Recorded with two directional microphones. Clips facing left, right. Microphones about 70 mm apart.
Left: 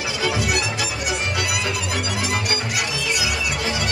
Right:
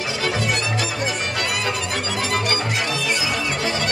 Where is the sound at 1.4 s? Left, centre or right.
Right.